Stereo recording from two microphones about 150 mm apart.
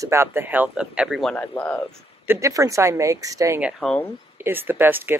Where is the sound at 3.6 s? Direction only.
5° right (ahead or behind).